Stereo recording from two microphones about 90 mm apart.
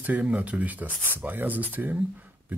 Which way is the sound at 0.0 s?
15° right (ahead or behind).